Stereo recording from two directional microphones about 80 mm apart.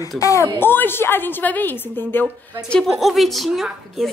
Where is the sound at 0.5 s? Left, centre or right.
Left.